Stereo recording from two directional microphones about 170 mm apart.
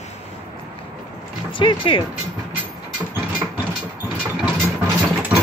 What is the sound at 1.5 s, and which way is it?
Speech, 30° left (ahead or behind).